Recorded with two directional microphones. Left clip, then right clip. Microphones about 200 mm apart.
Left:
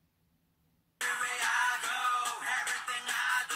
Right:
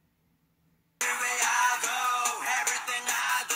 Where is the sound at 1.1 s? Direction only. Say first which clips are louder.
Right 4 dB; 50° right (ahead or behind).